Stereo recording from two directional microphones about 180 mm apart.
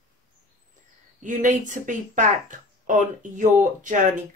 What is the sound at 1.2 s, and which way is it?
Speech, 45° right (ahead or behind).